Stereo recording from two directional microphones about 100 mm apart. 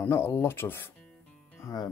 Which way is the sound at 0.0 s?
25° left (ahead or behind).